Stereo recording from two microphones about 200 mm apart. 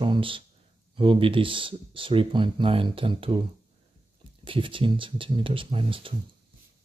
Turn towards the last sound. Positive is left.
turn(degrees=-25)  # may be behind; listen again after turning